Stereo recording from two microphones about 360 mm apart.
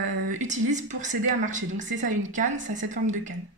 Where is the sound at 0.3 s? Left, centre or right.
Centre.